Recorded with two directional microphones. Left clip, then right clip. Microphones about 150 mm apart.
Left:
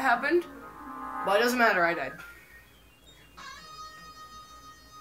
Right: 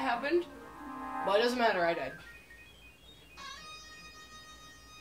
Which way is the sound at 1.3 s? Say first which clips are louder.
Left 5 dB; 15° right (ahead or behind).